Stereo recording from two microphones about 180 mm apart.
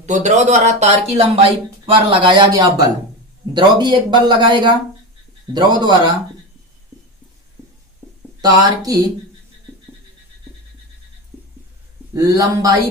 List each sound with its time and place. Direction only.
0.0 s speech: 40° right (ahead or behind); by 6.1 s 25° right (ahead or behind)
8.4 s speech: 20° right (ahead or behind)
12.1 s speech: 20° right (ahead or behind)